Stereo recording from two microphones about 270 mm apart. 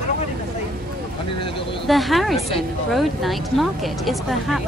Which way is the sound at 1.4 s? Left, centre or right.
Centre.